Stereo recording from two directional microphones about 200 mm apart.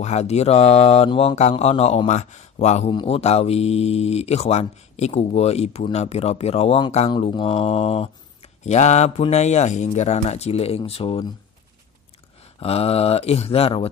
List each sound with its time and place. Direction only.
0.0 s mantra: 35° left (ahead or behind)
7.1 s speech: 25° left (ahead or behind)
8.6 s mantra: 35° left (ahead or behind)
12.5 s speech: 30° left (ahead or behind)